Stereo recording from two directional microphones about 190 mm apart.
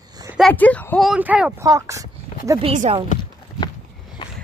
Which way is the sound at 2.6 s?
35° right (ahead or behind).